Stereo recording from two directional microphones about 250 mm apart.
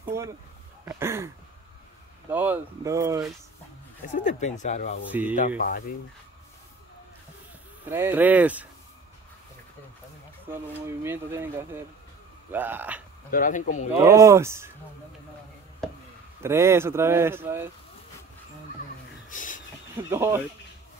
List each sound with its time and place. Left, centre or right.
0.1 s speech: centre
2.3 s speech: centre
4.1 s speech: left
5.1 s speech: centre
5.6 s speech: left
7.9 s speech: centre
10.5 s speech: centre
13.3 s speech: left
14.0 s speech: centre
16.4 s speech: centre
19.2 s a sound: left
20.1 s speech: centre